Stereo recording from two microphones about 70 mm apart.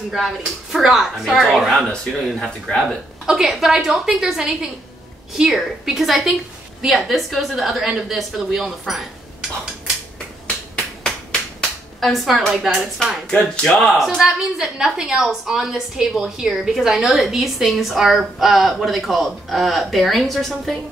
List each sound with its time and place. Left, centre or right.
0.1 s a woman's voice: centre
3.3 s a woman's voice: centre
12.0 s a woman's voice: centre
13.3 s speech: centre
13.7 s a woman's voice: centre